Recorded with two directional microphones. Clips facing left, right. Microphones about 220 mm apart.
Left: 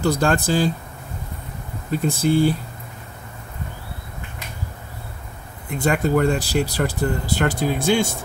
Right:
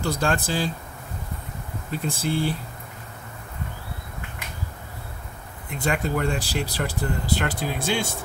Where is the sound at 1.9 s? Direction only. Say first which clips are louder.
Left 7 dB; 45° left (ahead or behind).